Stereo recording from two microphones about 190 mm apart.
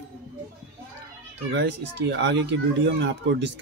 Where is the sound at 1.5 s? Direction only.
65° right (ahead or behind).